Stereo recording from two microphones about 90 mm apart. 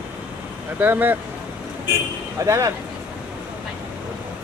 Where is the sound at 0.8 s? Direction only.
20° right (ahead or behind).